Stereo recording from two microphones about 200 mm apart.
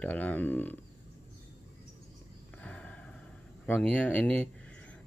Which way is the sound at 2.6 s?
5° left (ahead or behind).